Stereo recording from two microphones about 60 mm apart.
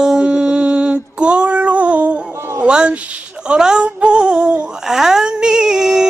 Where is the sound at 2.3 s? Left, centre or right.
Right.